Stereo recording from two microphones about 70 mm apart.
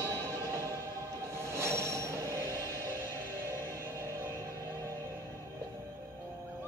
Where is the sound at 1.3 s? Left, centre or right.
Right.